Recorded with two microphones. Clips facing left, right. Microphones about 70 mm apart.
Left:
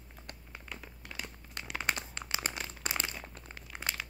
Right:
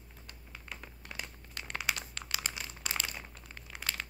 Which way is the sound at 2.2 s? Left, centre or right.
Left.